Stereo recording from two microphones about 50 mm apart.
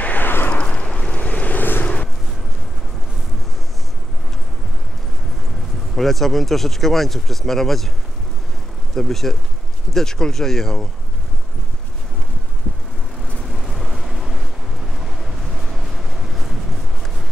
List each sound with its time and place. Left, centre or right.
0.0 s a sound: left
0.5 s vehicle: left
5.9 s speech: centre
8.9 s speech: centre
13.5 s vehicle: centre